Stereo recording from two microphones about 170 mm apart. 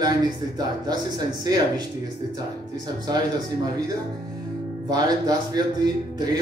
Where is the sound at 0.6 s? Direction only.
25° right (ahead or behind).